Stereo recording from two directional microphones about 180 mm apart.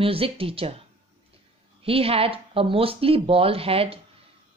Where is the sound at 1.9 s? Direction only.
30° right (ahead or behind).